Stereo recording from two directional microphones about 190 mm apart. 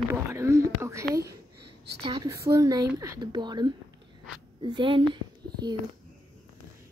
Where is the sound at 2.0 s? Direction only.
20° right (ahead or behind).